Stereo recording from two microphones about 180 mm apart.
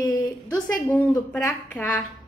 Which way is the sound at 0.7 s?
5° left (ahead or behind).